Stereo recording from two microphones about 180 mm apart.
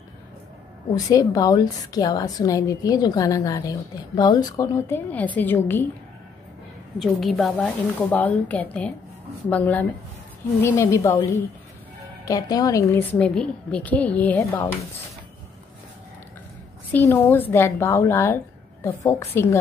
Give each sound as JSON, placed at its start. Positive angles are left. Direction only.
{"t": 0.9, "sound": "a woman's voice", "side_deg": 20}
{"t": 7.0, "sound": "a woman's voice", "side_deg": 0}
{"t": 17.1, "sound": "a woman's voice", "side_deg": 10}